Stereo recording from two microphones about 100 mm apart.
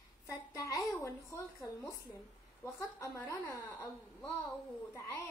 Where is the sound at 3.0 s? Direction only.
35° left (ahead or behind).